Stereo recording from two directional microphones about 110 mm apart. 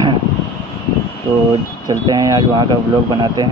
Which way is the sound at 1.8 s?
35° right (ahead or behind).